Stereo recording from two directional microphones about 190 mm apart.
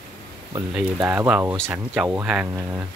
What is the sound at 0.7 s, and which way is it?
Speech, 10° right (ahead or behind).